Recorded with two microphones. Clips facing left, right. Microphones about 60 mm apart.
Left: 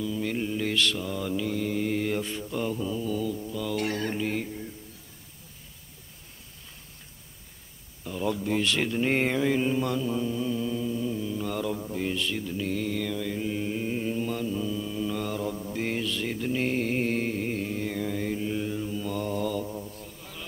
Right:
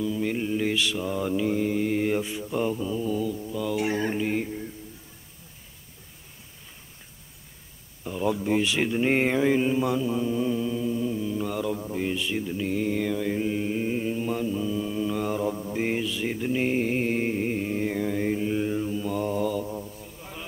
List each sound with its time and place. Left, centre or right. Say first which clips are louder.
0.0 s mantra: right 2 dB; centre
8.0 s mantra: right 3 dB; centre
20.2 s a sound: right 3 dB; centre